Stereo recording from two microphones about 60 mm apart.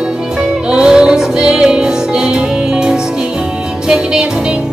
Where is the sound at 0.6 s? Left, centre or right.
Centre.